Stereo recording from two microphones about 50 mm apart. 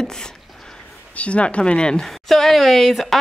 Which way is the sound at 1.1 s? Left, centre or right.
Left.